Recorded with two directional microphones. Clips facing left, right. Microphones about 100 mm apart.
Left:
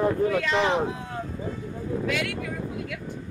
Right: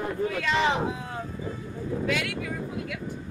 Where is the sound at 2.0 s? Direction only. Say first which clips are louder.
Right 1 dB; centre (ahead or behind).